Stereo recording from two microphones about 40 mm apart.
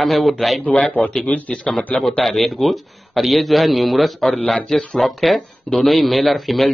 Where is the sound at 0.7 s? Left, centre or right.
Left.